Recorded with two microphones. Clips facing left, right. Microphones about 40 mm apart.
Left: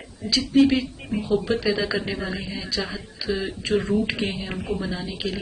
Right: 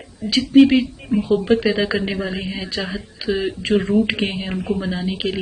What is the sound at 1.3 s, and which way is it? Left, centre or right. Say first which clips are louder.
A woman's voice: right 5 dB; right.